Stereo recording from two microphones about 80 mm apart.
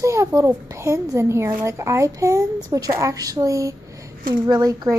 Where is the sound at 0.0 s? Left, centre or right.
Right.